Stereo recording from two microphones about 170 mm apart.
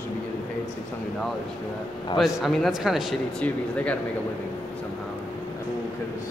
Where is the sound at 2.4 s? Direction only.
Centre (ahead or behind).